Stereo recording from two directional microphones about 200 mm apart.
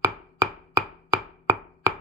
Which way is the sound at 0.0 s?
20° right (ahead or behind).